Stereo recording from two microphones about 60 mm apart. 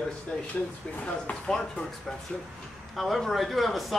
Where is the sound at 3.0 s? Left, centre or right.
Centre.